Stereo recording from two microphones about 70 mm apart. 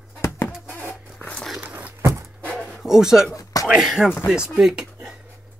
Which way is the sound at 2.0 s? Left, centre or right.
Right.